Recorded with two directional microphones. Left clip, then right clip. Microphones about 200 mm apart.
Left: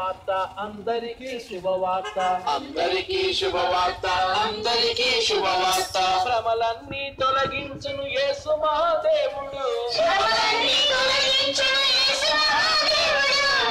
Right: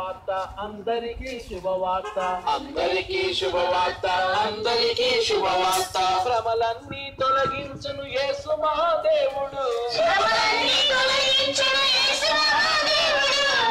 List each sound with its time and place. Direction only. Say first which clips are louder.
1.8 s music: even; 45° left (ahead or behind); by 7.5 s 20° left (ahead or behind)
8.1 s a man's voice: left 1 dB; 15° left (ahead or behind)